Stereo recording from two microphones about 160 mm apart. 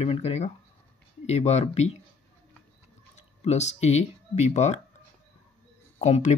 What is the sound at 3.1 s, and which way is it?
Speech, 45° left (ahead or behind).